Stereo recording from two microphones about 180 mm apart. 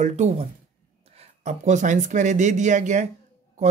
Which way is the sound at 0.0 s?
40° right (ahead or behind).